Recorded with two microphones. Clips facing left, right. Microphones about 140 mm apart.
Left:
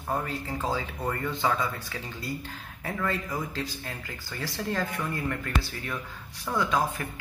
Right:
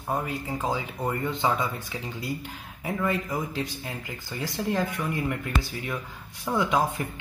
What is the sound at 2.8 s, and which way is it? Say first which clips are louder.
Speech: right 3 dB; 15° right (ahead or behind).